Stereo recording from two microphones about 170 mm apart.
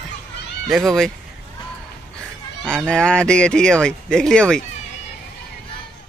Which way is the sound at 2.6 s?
5° left (ahead or behind).